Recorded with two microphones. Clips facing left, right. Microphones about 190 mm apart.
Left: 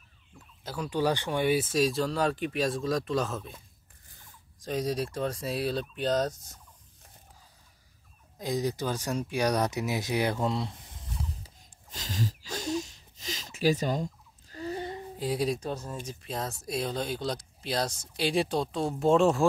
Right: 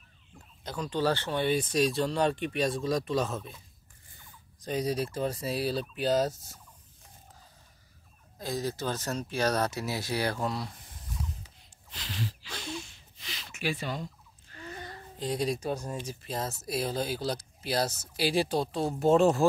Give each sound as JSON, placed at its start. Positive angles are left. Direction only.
{"t": 0.7, "sound": "speech", "side_deg": 10}
{"t": 4.6, "sound": "speech", "side_deg": 0}
{"t": 8.4, "sound": "speech", "side_deg": 15}
{"t": 11.4, "sound": "a sound", "side_deg": 45}
{"t": 15.1, "sound": "speech", "side_deg": 5}
{"t": 15.6, "sound": "speech", "side_deg": -10}
{"t": 16.2, "sound": "speech", "side_deg": 0}